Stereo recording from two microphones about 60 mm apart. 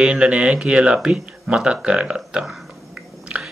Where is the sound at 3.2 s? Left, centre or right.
Centre.